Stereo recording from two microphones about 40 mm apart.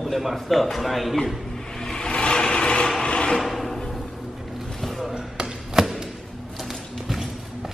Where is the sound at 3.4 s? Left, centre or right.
Centre.